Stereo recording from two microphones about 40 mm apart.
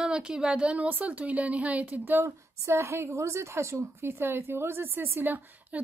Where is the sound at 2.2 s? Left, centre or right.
Right.